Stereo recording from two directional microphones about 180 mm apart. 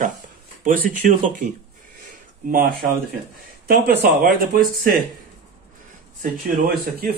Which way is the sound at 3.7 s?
55° right (ahead or behind).